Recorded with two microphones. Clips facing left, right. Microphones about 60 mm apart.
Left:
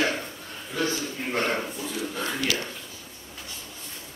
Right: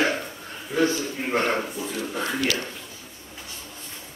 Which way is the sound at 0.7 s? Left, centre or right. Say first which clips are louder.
Right 5 dB; right.